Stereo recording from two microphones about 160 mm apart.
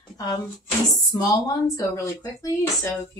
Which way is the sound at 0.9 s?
25° left (ahead or behind).